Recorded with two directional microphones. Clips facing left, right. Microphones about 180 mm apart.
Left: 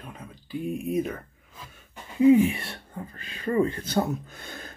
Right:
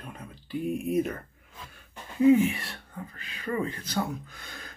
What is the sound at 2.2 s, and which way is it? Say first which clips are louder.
Speech: left 2 dB; 20° left (ahead or behind).